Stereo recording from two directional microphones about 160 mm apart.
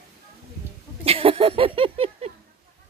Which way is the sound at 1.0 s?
35° right (ahead or behind).